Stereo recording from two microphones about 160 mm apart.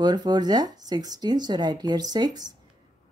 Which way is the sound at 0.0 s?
25° right (ahead or behind).